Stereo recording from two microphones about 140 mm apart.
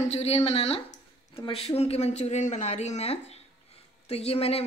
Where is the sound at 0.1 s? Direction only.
50° left (ahead or behind).